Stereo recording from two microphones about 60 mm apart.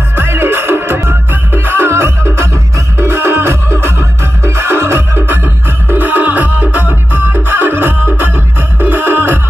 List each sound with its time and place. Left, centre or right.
0.1 s music: right